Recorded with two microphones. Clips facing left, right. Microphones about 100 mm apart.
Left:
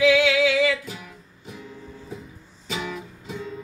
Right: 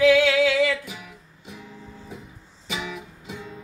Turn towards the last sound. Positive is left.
turn(degrees=-10)  # may be behind; listen again after turning